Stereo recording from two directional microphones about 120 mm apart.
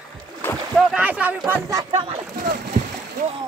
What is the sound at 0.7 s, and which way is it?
Speech, 10° right (ahead or behind).